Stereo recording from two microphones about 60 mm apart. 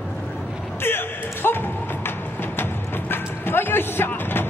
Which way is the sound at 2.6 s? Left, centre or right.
Left.